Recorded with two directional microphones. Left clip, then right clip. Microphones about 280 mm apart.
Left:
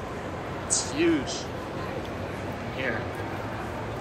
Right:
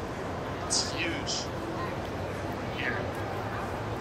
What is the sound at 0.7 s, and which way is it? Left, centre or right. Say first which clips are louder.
Speech: left 6 dB; centre.